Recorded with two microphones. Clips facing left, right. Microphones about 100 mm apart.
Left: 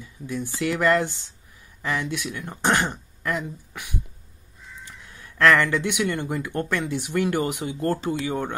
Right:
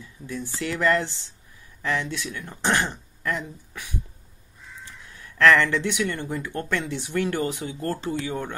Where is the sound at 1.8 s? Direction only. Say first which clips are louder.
Even; 15° left (ahead or behind).